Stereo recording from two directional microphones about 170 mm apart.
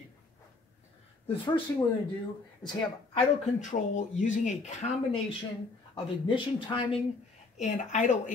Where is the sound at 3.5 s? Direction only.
45° left (ahead or behind).